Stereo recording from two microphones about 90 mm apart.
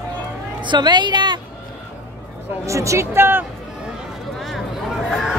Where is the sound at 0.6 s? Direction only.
55° right (ahead or behind).